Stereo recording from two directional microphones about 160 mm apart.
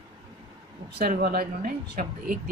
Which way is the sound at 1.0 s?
75° right (ahead or behind).